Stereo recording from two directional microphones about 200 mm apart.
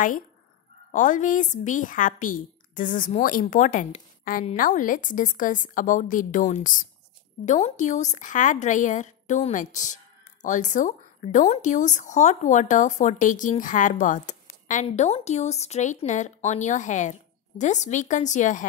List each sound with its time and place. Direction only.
0.9 s speech: 40° left (ahead or behind)